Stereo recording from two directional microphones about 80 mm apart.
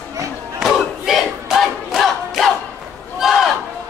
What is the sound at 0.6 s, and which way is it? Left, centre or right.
Battle cry, centre.